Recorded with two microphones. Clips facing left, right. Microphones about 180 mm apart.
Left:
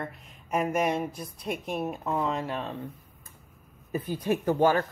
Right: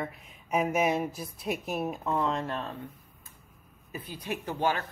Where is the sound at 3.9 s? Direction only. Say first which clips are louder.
Left 8 dB; 45° left (ahead or behind).